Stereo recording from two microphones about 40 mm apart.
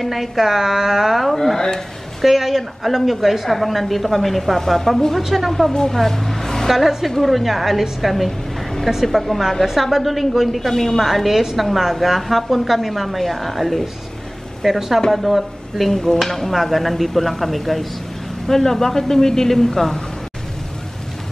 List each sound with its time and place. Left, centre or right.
0.0 s a woman's voice: centre
1.2 s speech: centre
2.2 s a woman's voice: centre
5.7 s speech: centre
5.9 s vehicle: centre
6.7 s a woman's voice: centre
8.3 s a sound: centre
9.0 s a woman's voice: centre
10.7 s speech: centre
11.0 s a woman's voice: centre
15.9 s a woman's voice: centre